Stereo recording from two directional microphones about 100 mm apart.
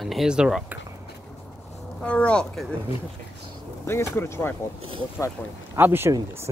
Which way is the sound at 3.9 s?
25° left (ahead or behind).